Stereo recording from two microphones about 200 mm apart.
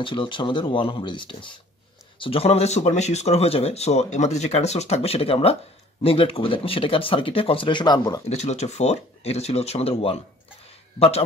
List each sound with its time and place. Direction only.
0.0 s speech: 25° left (ahead or behind)
8.3 s speech: 35° left (ahead or behind)